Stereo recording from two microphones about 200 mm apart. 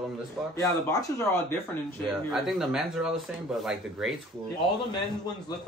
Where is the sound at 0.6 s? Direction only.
15° left (ahead or behind).